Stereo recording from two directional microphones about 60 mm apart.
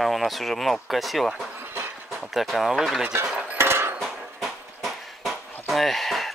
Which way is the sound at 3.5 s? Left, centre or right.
Right.